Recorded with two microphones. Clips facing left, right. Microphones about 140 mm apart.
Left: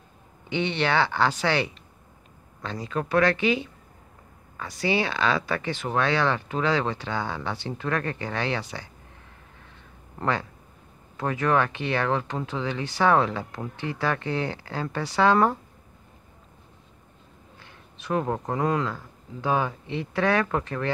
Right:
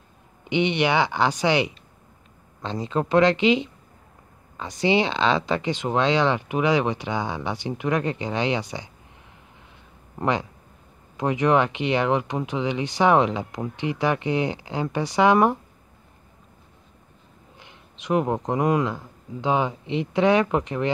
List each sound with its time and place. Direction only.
0.5 s speech: 15° right (ahead or behind)
10.1 s speech: 15° right (ahead or behind)
17.6 s speech: 20° right (ahead or behind)